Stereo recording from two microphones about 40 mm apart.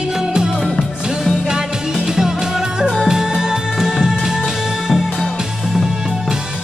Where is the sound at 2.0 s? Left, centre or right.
Centre.